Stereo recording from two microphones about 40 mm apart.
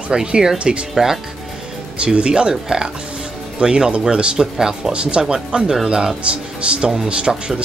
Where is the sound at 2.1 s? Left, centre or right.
Right.